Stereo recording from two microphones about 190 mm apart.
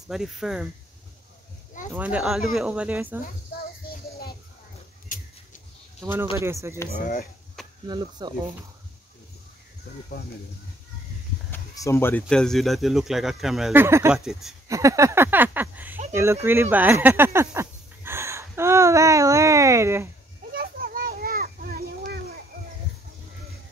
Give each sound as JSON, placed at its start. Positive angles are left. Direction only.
{"t": 0.1, "sound": "speech", "side_deg": 0}
{"t": 2.0, "sound": "speech", "side_deg": -5}
{"t": 5.1, "sound": "a sound", "side_deg": 45}
{"t": 6.3, "sound": "speech", "side_deg": -15}
{"t": 6.9, "sound": "speech", "side_deg": 45}
{"t": 7.8, "sound": "speech", "side_deg": -20}
{"t": 11.5, "sound": "speech", "side_deg": 15}
{"t": 13.8, "sound": "speech", "side_deg": -15}
{"t": 20.5, "sound": "children playing", "side_deg": -50}